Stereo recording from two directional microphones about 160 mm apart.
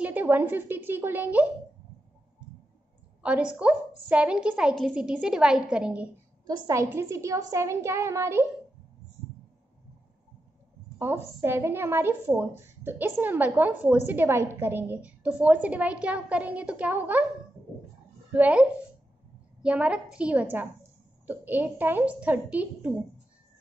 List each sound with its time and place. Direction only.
0.0 s a woman's voice: 10° right (ahead or behind)
3.2 s a woman's voice: 5° right (ahead or behind)
6.4 s a woman's voice: 20° right (ahead or behind)
11.0 s a woman's voice: 15° right (ahead or behind)
18.3 s a woman's voice: 10° right (ahead or behind)